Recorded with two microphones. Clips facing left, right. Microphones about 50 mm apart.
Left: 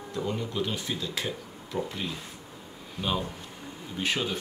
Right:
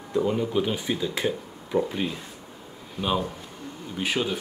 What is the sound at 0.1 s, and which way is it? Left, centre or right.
Speech, centre.